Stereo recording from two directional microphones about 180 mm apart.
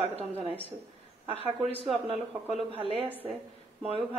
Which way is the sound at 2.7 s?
30° right (ahead or behind).